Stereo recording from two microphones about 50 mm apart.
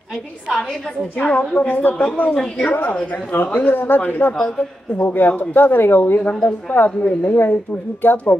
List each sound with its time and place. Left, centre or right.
1.1 s a woman's voice: left